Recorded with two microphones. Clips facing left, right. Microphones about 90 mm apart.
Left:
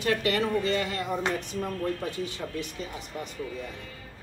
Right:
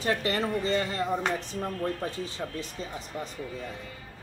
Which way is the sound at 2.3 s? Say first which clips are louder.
Left 1 dB; 30° right (ahead or behind).